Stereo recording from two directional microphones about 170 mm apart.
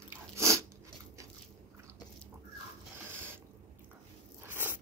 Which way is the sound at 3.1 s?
15° right (ahead or behind).